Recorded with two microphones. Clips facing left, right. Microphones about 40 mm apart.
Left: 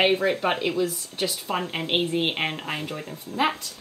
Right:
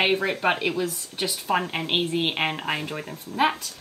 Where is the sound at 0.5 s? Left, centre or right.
Right.